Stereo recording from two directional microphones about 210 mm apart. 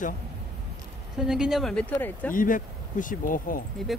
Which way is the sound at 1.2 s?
5° right (ahead or behind).